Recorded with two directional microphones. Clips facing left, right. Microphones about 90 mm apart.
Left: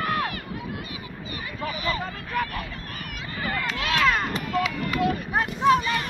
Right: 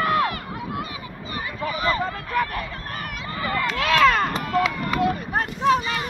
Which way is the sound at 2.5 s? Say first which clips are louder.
Right 4 dB; 45° right (ahead or behind).